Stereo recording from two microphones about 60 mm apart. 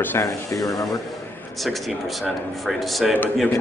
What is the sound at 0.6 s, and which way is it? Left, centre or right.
Speech, left.